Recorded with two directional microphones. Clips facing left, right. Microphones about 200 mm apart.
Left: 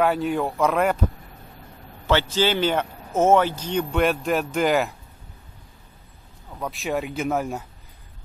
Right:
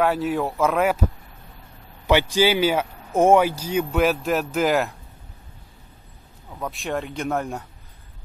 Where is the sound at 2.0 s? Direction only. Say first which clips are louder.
Right 2 dB; 15° right (ahead or behind).